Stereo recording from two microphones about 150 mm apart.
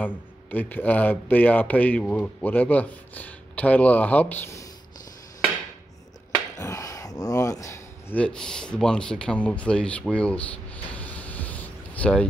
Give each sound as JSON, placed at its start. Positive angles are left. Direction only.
{"t": 0.0, "sound": "a man's voice", "side_deg": 10}
{"t": 6.6, "sound": "a sound", "side_deg": 20}
{"t": 8.2, "sound": "speech", "side_deg": 5}